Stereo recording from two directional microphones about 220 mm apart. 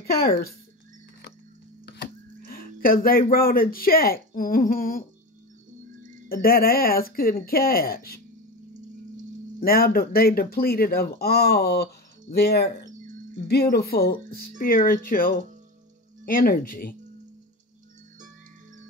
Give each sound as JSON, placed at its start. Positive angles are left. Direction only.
{"t": 0.0, "sound": "speech", "side_deg": 40}
{"t": 1.9, "sound": "speech", "side_deg": 50}
{"t": 6.2, "sound": "speech", "side_deg": 40}
{"t": 9.6, "sound": "speech", "side_deg": 40}